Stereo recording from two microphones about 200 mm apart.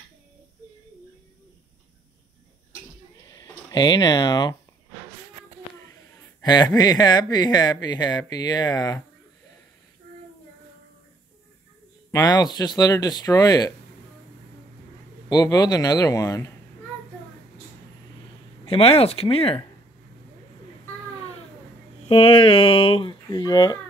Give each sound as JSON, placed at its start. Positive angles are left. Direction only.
{"t": 3.3, "sound": "speech", "side_deg": 20}
{"t": 6.4, "sound": "speech", "side_deg": 20}
{"t": 12.1, "sound": "speech", "side_deg": 20}
{"t": 15.2, "sound": "a man's voice", "side_deg": 20}
{"t": 18.7, "sound": "speech", "side_deg": 30}
{"t": 22.0, "sound": "speech", "side_deg": 30}